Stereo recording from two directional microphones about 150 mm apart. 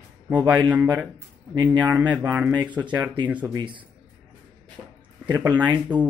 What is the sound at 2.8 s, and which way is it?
Speech, 30° right (ahead or behind).